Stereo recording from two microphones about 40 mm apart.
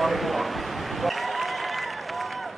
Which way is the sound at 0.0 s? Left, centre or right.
Centre.